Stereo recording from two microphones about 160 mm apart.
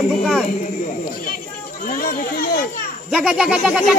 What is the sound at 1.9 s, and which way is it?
Speech, 65° left (ahead or behind).